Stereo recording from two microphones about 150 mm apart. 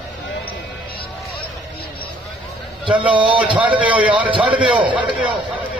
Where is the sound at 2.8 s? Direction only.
35° right (ahead or behind).